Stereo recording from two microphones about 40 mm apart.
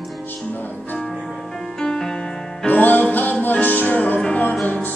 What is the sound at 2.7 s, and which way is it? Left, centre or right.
Music, left.